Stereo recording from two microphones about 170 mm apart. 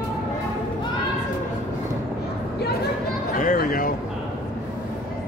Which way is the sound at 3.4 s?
55° left (ahead or behind).